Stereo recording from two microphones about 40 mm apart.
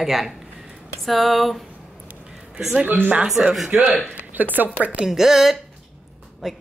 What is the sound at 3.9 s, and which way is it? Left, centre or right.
Speech, right.